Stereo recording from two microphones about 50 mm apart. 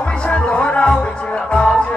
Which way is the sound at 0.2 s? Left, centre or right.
Left.